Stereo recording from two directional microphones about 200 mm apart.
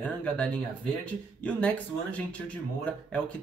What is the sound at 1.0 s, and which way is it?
Speech, 5° left (ahead or behind).